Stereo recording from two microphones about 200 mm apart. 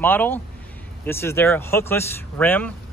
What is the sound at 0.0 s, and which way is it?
Speech, 10° left (ahead or behind).